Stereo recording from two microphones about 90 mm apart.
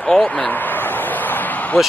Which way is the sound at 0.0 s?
15° left (ahead or behind).